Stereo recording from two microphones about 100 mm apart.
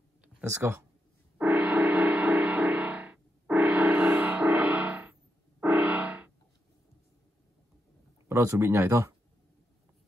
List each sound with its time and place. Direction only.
0.5 s speech: 25° right (ahead or behind)
1.4 s music: 15° right (ahead or behind)
8.3 s speech: 25° right (ahead or behind)